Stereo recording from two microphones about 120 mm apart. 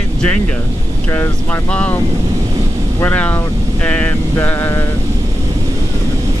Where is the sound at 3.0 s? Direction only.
15° left (ahead or behind).